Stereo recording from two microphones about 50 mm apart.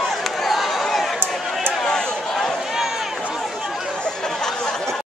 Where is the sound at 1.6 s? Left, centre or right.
Centre.